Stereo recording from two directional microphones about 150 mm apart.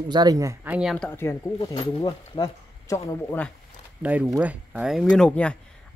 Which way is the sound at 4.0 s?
10° right (ahead or behind).